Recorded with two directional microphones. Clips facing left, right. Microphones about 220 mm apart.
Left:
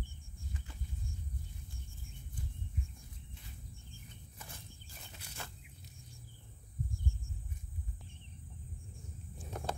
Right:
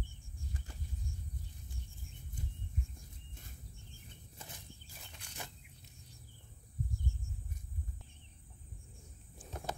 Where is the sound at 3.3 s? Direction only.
45° right (ahead or behind).